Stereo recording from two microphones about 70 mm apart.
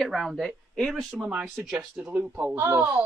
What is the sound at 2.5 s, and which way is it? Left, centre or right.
Speech, right.